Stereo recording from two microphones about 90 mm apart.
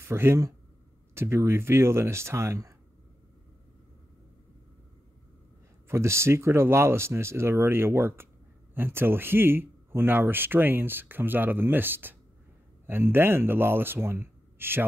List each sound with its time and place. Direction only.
0.0 s speech: 30° right (ahead or behind)
5.9 s speech: 30° right (ahead or behind)